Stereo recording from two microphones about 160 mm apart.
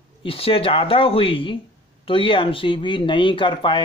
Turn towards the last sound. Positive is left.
turn(degrees=30)  # may be behind; listen again after turning